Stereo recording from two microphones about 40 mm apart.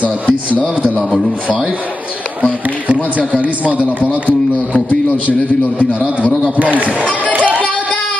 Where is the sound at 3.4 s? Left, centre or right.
Right.